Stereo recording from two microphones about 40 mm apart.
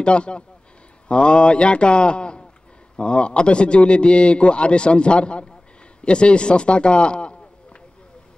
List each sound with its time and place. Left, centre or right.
0.0 s a man's voice: left